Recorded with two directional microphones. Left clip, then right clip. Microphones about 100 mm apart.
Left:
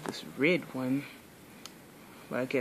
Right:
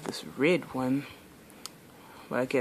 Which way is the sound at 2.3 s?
30° right (ahead or behind).